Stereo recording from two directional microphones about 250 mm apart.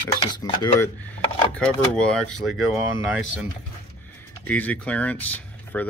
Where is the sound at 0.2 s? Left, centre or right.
Centre.